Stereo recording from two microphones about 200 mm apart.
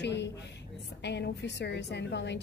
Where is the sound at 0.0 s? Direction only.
60° left (ahead or behind).